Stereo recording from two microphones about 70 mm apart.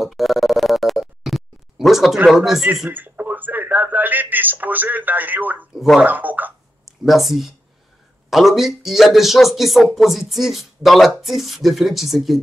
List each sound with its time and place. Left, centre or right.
0.0 s a sound: centre
2.2 s a man's voice: centre
2.9 s a sound: right
5.8 s speech: centre
6.0 s gargling: right
7.1 s a man's voice: centre